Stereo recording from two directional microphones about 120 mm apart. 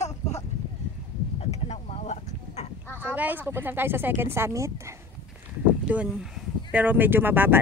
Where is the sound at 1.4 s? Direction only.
60° left (ahead or behind).